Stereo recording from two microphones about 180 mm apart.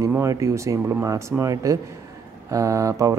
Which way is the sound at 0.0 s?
15° right (ahead or behind).